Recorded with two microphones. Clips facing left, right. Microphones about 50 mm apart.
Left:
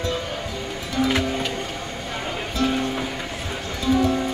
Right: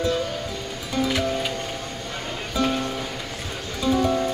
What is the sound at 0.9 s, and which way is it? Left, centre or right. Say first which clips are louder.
Music: left 1 dB; left.